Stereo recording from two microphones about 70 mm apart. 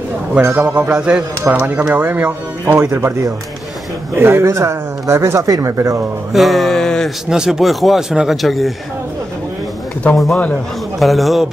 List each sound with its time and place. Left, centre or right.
0.6 s a man's voice: centre
1.5 s speech: right
2.7 s speech: right
4.1 s speech: right
6.3 s a man's voice: centre
7.2 s a man's voice: centre
10.1 s a man's voice: centre